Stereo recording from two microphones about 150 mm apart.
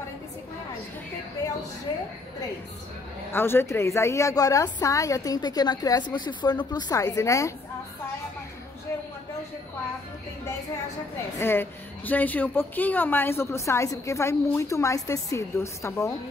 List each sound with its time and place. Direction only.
3.3 s a woman's voice: 15° left (ahead or behind)
11.3 s a woman's voice: 15° left (ahead or behind)